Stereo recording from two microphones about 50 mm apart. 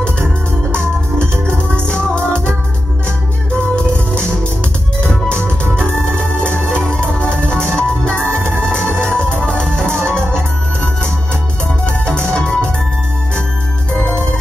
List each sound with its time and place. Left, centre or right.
0.7 s music: centre
5.8 s organ: centre
6.7 s music: centre
12.2 s music: centre